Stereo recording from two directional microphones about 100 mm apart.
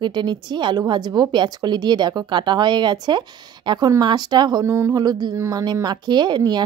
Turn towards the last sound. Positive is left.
turn(degrees=-45)  # may be behind; listen again after turning